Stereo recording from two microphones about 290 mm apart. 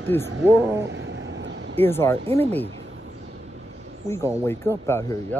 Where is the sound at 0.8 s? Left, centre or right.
Right.